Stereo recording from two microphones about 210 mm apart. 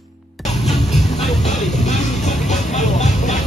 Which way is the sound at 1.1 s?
30° left (ahead or behind).